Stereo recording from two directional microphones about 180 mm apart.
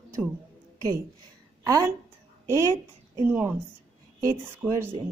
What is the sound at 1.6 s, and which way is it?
A woman's voice, 20° right (ahead or behind).